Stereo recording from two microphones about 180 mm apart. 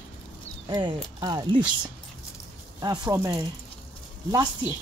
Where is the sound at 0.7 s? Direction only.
25° right (ahead or behind).